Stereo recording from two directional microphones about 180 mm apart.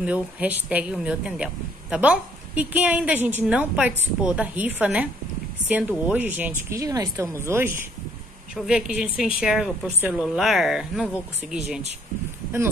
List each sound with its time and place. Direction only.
0.0 s a woman's voice: 10° right (ahead or behind)